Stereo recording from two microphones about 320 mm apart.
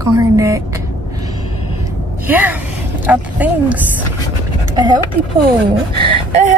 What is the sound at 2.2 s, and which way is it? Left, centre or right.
A woman's voice, centre.